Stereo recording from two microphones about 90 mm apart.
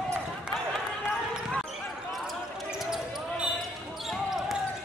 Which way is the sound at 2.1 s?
Centre (ahead or behind).